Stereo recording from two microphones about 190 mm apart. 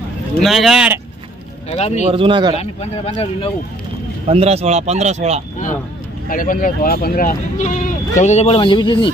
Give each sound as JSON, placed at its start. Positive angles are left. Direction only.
{"t": 0.4, "sound": "speech", "side_deg": 0}
{"t": 1.7, "sound": "speech", "side_deg": 35}
{"t": 2.0, "sound": "speech", "side_deg": -25}
{"t": 2.5, "sound": "speech", "side_deg": 35}
{"t": 4.3, "sound": "speech", "side_deg": -35}
{"t": 6.2, "sound": "speech", "side_deg": 45}